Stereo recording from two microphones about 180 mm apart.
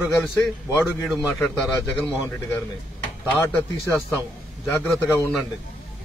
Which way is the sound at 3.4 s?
15° left (ahead or behind).